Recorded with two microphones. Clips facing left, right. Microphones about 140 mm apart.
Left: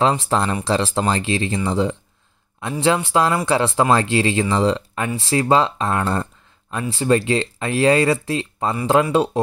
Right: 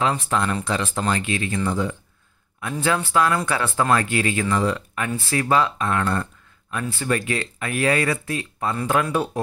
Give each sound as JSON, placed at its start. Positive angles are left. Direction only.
{"t": 0.0, "sound": "speech", "side_deg": 30}